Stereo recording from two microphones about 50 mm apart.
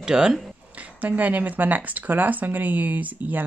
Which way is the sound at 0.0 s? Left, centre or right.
Centre.